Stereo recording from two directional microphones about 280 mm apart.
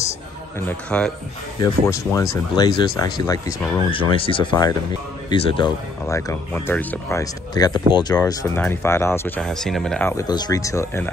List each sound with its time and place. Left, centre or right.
0.6 s speech: centre